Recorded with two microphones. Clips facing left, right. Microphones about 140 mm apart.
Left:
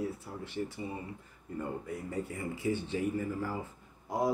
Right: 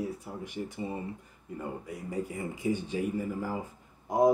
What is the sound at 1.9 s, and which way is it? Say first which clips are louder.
Speech: right 2 dB; 10° right (ahead or behind).